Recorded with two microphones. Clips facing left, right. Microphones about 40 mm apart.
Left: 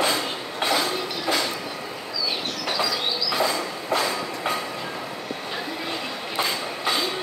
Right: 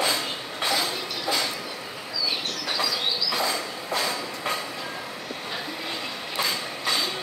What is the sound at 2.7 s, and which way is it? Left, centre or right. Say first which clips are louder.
Train: left 1 dB; centre.